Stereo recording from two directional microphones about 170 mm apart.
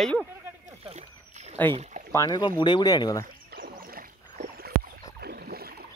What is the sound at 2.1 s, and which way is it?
Speech, 25° left (ahead or behind).